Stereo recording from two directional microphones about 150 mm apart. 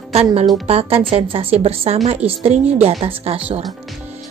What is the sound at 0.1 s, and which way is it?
A woman's voice, 40° right (ahead or behind).